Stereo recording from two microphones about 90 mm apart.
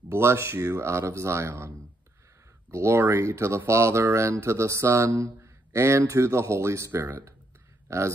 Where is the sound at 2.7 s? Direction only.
30° right (ahead or behind).